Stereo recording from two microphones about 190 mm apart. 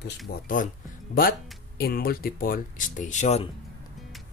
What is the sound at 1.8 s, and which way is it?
Speech, 55° left (ahead or behind).